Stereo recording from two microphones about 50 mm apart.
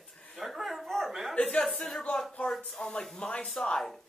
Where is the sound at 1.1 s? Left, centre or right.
Centre.